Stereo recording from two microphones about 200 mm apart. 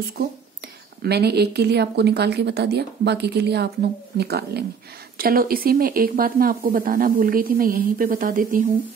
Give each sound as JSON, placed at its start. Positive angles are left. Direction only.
{"t": 1.0, "sound": "speech", "side_deg": -55}